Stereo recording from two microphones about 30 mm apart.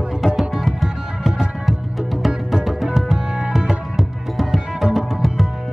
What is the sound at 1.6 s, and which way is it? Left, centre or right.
Music, centre.